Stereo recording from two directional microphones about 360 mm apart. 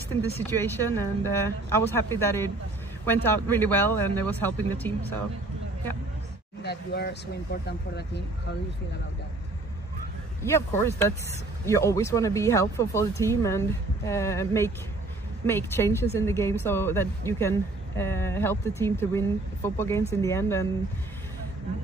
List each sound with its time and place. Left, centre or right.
0.4 s speech: centre
6.6 s speech: left
10.4 s speech: centre